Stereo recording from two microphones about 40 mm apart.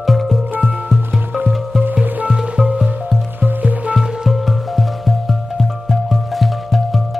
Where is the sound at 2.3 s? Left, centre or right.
Centre.